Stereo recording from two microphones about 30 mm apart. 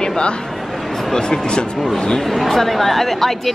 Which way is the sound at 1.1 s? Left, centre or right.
Left.